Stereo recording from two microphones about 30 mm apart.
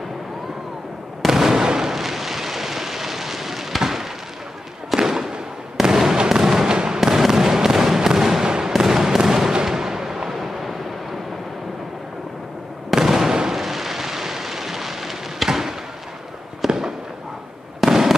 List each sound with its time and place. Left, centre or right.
1.2 s fireworks: centre
6.7 s fireworks: right
7.2 s fireworks: centre
9.7 s artillery fire: centre
12.9 s fireworks: centre
13.5 s a sound: centre
16.6 s fireworks: centre